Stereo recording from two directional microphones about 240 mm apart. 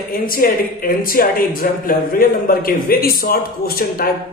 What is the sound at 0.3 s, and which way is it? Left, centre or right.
A woman's voice, left.